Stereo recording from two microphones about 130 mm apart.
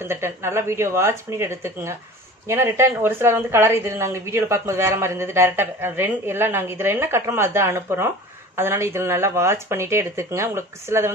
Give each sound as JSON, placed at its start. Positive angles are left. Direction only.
{"t": 0.0, "sound": "a woman's voice", "side_deg": -20}